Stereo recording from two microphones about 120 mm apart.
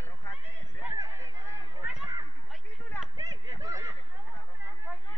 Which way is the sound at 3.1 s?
40° right (ahead or behind).